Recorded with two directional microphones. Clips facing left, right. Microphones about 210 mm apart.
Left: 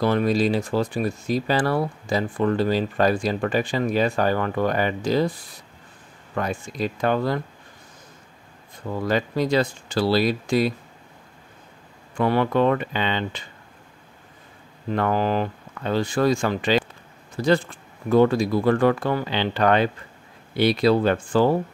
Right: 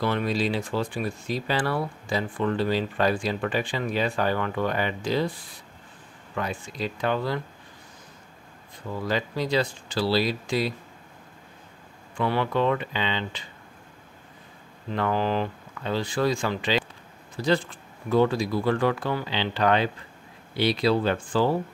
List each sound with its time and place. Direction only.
0.0 s speech: 40° left (ahead or behind)
6.3 s speech: 45° left (ahead or behind)
9.0 s speech: 50° left (ahead or behind)
12.2 s speech: 45° left (ahead or behind)
15.0 s speech: 45° left (ahead or behind)